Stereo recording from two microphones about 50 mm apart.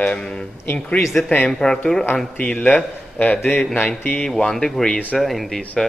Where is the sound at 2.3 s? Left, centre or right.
Left.